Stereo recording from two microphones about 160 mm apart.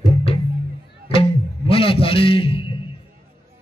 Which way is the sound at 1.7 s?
35° left (ahead or behind).